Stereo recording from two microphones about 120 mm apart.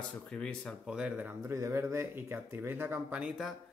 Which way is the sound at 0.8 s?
5° right (ahead or behind).